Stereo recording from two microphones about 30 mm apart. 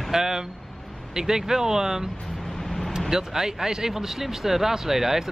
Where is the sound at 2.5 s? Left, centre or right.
Centre.